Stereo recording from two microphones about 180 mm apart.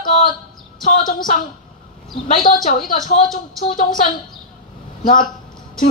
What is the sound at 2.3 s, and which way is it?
A woman's voice, 50° left (ahead or behind).